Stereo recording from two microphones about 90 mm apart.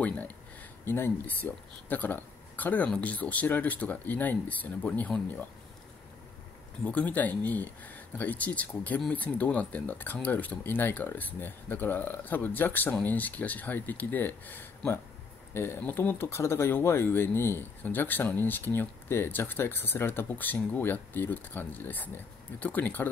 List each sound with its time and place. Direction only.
0.0 s a sound: 15° left (ahead or behind)
0.8 s speech: 25° left (ahead or behind)
6.8 s speech: 15° left (ahead or behind)